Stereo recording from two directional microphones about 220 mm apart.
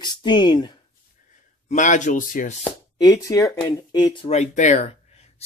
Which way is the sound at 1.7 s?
35° left (ahead or behind).